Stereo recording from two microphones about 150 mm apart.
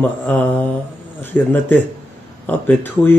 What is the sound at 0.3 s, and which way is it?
A man's voice, 10° left (ahead or behind).